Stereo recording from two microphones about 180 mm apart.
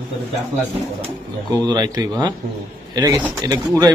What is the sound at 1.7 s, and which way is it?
Speech, 20° right (ahead or behind).